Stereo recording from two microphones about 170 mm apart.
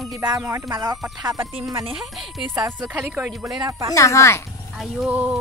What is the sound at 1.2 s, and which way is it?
Speech, 20° right (ahead or behind).